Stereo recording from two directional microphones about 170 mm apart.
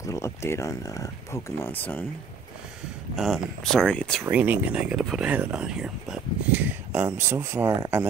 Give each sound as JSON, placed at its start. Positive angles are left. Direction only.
{"t": 0.0, "sound": "speech", "side_deg": 15}
{"t": 3.2, "sound": "speech", "side_deg": 0}
{"t": 4.2, "sound": "speech", "side_deg": -10}